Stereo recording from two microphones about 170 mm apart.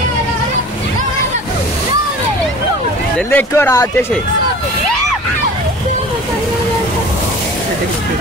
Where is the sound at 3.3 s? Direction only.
15° left (ahead or behind).